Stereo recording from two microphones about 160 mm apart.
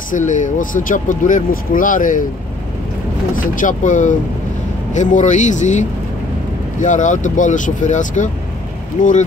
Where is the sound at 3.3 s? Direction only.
55° left (ahead or behind).